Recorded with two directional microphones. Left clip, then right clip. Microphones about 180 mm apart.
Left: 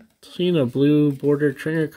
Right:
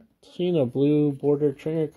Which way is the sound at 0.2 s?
25° left (ahead or behind).